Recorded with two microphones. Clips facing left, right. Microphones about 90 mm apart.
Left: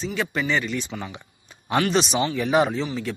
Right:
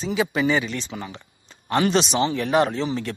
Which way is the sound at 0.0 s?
5° right (ahead or behind).